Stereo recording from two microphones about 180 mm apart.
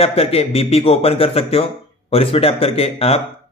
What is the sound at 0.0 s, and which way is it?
Speech, 35° left (ahead or behind).